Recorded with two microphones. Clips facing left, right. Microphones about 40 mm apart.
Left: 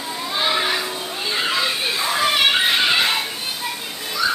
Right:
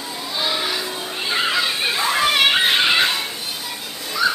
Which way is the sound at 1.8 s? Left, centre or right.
Centre.